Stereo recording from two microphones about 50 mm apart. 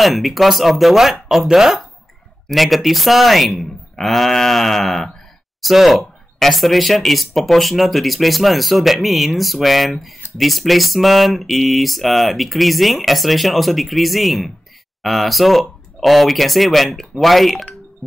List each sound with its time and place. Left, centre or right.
0.0 s speech: centre